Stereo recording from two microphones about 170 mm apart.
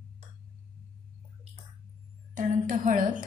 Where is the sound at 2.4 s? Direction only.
50° right (ahead or behind).